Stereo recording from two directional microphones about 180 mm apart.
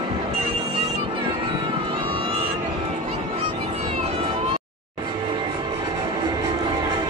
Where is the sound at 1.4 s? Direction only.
30° right (ahead or behind).